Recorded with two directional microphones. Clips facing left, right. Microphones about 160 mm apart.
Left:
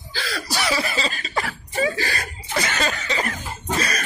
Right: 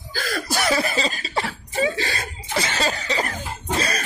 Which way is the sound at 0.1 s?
50° right (ahead or behind).